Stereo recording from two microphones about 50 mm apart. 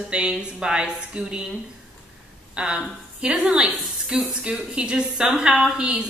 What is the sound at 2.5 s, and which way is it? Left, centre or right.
A woman's voice, centre.